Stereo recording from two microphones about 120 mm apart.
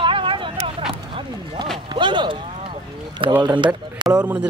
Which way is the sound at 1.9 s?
40° right (ahead or behind).